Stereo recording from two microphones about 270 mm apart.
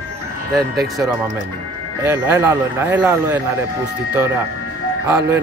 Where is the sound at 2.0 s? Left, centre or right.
Centre.